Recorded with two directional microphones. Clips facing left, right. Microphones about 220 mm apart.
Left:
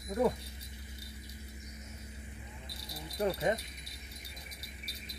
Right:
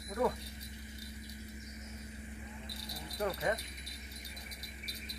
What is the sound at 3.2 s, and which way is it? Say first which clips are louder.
Speech: left 4 dB; 25° left (ahead or behind).